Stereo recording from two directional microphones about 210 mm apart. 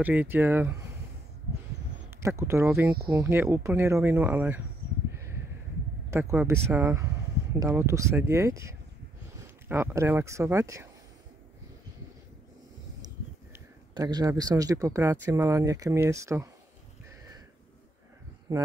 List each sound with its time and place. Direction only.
0.0 s speech: 10° right (ahead or behind)
2.2 s speech: 15° right (ahead or behind)
6.0 s speech: 10° right (ahead or behind)
13.9 s speech: 20° right (ahead or behind)